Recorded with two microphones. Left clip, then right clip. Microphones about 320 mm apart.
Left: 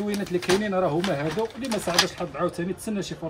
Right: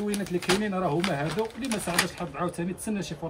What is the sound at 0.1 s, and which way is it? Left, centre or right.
Speech, centre.